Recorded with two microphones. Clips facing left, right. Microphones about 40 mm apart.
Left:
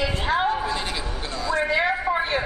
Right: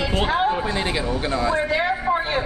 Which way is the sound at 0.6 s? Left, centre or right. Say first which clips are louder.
Right 4 dB; right.